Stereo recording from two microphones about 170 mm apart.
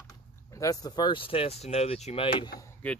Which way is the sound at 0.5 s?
20° left (ahead or behind).